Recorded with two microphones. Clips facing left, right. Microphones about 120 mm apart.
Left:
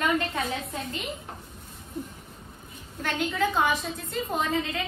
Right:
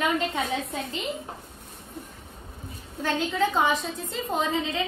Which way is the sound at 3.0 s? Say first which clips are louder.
Right 2 dB; 25° right (ahead or behind).